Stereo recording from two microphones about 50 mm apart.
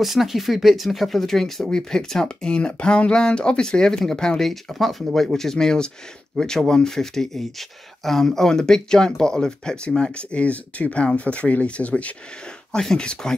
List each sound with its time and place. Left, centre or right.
0.0 s speech: centre; by 12.1 s left
12.7 s speech: centre